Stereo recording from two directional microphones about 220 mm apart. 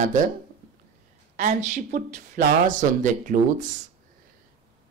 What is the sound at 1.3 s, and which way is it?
Speech, 35° right (ahead or behind).